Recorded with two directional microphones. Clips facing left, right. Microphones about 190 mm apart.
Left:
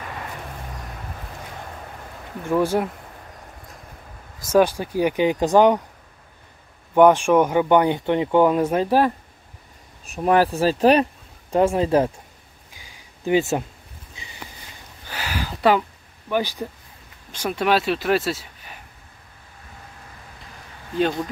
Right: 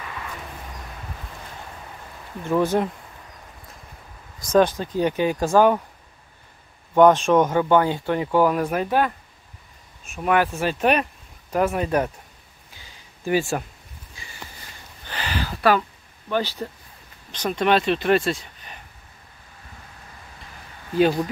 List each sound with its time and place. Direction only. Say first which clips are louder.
2.4 s speech: even; 10° left (ahead or behind)
4.5 s speech: left 1 dB; 10° left (ahead or behind)
7.0 s speech: left 1 dB; 10° left (ahead or behind)
12.7 s a sound: even; 10° left (ahead or behind)
16.3 s speech: left 1 dB; 15° left (ahead or behind)